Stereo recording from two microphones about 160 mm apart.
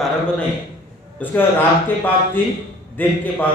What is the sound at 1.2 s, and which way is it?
A man's voice, 10° left (ahead or behind).